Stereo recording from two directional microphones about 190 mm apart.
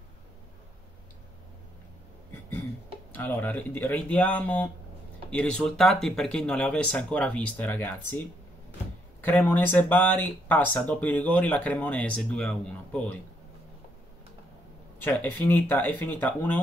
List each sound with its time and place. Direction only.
3.1 s speech: 10° left (ahead or behind)
9.2 s speech: 10° left (ahead or behind)
15.0 s speech: 10° left (ahead or behind)